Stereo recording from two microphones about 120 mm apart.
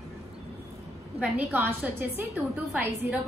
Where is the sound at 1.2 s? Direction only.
15° right (ahead or behind).